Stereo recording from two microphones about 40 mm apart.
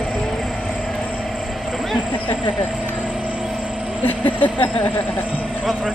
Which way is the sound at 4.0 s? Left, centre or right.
Left.